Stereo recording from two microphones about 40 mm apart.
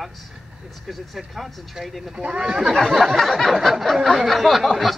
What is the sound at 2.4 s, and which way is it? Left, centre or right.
Speech, centre.